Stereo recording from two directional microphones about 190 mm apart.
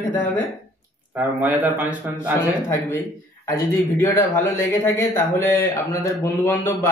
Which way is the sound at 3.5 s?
10° left (ahead or behind).